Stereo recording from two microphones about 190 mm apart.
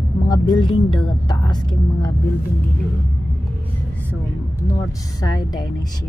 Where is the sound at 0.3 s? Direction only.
20° left (ahead or behind).